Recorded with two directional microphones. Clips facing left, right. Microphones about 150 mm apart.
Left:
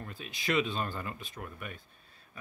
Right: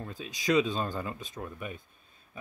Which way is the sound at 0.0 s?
15° right (ahead or behind).